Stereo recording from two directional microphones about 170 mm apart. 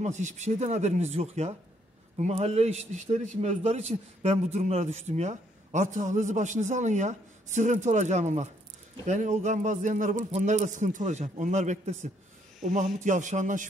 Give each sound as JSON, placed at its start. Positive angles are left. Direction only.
{"t": 0.0, "sound": "a man's voice", "side_deg": -45}